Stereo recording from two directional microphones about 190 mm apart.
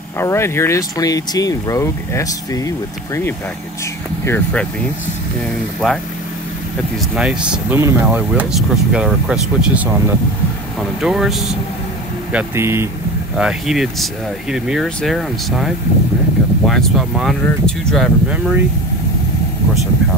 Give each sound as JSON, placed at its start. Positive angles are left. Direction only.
{"t": 0.2, "sound": "speech", "side_deg": 15}
{"t": 4.2, "sound": "speech", "side_deg": 10}
{"t": 5.8, "sound": "speech", "side_deg": 0}
{"t": 13.4, "sound": "speech", "side_deg": -5}